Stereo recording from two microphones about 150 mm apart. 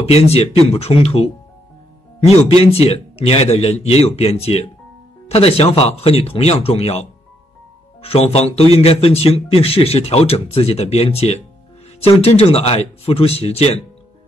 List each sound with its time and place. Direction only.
0.0 s a man's voice: 45° left (ahead or behind)